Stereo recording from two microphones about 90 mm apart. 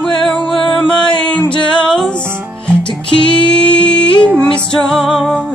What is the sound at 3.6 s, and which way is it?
Humming, 70° left (ahead or behind).